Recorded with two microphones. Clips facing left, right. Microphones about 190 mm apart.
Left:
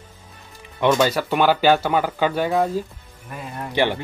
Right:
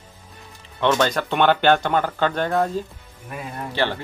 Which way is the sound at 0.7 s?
10° left (ahead or behind).